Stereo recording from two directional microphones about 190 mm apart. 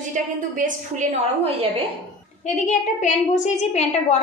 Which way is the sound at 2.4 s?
40° left (ahead or behind).